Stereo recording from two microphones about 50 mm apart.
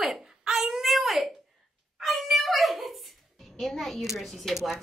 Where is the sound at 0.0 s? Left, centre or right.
Centre.